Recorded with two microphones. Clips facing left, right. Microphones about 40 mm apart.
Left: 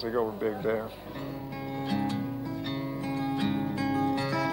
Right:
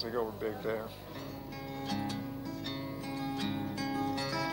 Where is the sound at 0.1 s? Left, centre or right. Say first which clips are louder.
Left 6 dB; centre.